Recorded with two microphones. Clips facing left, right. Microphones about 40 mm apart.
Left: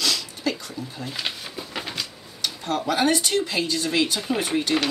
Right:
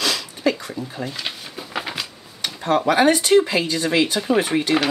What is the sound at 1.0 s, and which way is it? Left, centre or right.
Speech, centre.